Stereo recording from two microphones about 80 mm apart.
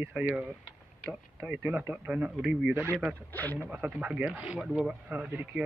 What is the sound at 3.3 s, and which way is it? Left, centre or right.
Speech, left.